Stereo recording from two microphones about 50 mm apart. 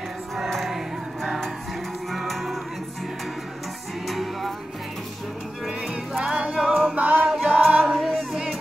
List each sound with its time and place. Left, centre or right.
0.7 s music: centre
4.1 s music: centre
5.7 s music: centre
7.0 s choir: right
7.2 s music: centre
7.8 s choir: centre